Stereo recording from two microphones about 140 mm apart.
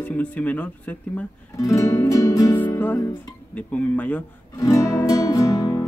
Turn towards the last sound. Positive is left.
turn(degrees=25)  # may be behind; listen again after turning